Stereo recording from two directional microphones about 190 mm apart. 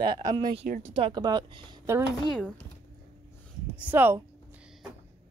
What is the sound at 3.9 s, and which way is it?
Speech, 10° right (ahead or behind).